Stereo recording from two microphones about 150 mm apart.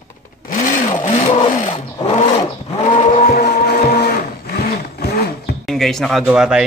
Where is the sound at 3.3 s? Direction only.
85° left.